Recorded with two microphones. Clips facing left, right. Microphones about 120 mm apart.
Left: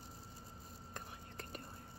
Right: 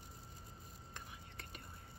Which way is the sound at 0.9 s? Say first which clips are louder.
Left 4 dB; 40° left (ahead or behind).